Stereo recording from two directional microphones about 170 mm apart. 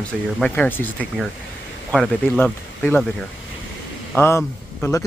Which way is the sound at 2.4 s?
10° left (ahead or behind).